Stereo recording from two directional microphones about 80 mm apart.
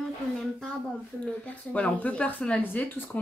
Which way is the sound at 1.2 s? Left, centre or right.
Centre.